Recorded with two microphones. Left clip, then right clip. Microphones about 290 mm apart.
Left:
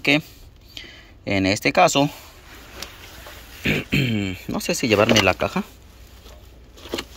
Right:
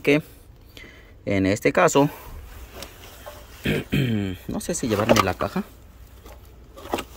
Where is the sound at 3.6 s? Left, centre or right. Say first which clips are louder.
Left 3 dB; centre.